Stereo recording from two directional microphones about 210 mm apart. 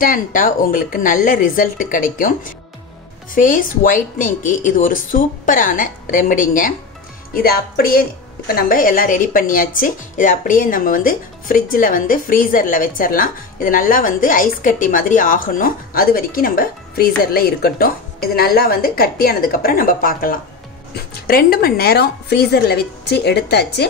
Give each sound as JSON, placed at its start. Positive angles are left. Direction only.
{"t": 0.0, "sound": "a woman's voice", "side_deg": 40}